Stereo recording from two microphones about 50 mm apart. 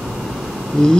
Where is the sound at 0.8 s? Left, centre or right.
Centre.